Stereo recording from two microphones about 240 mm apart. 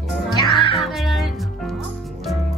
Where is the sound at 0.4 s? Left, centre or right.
Centre.